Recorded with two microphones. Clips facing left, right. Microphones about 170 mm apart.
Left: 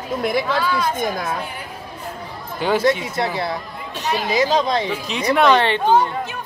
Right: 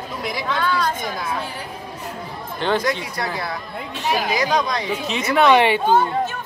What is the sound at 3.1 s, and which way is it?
Speech, 25° left (ahead or behind).